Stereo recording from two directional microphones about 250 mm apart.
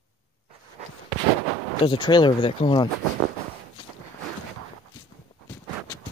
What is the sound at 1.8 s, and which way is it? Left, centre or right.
Speech, centre.